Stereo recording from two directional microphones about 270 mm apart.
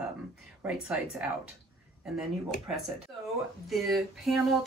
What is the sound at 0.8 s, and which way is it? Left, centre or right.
Speech, centre.